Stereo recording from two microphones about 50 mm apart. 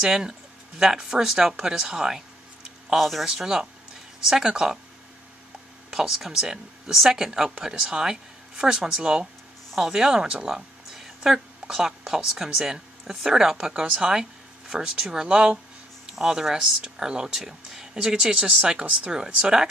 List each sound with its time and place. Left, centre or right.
0.0 s speech: centre
3.3 s speech: centre
5.9 s speech: centre
10.5 s a sound: centre
12.5 s speech: centre